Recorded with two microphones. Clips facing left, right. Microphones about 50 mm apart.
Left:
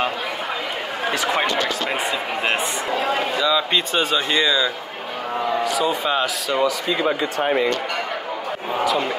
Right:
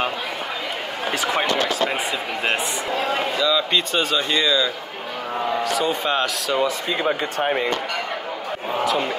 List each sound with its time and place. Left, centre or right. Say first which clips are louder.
1.3 s speech: even; centre
3.3 s speech: right 1 dB; centre
5.8 s speech: left 1 dB; centre